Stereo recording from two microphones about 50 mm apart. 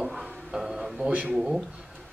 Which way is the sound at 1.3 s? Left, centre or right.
Centre.